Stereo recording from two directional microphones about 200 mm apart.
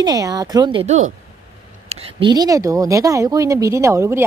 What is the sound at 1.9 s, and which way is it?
Speech, 25° right (ahead or behind).